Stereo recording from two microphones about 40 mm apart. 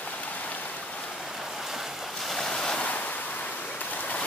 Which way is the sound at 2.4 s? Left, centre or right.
Centre.